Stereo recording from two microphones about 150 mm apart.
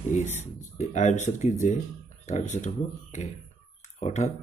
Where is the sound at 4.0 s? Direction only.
45° left (ahead or behind).